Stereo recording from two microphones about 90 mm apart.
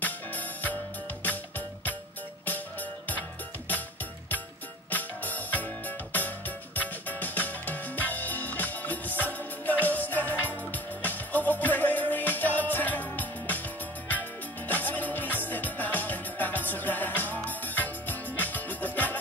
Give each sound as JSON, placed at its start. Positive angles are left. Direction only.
{"t": 0.0, "sound": "music", "side_deg": 20}
{"t": 2.4, "sound": "music", "side_deg": 20}
{"t": 4.8, "sound": "music", "side_deg": 20}